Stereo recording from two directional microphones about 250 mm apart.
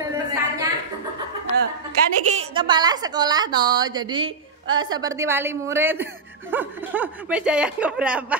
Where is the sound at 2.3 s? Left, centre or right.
Right.